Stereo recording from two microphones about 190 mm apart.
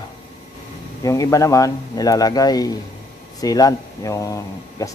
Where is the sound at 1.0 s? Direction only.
20° left (ahead or behind).